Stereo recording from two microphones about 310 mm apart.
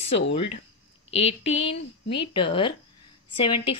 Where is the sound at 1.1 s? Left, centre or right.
Left.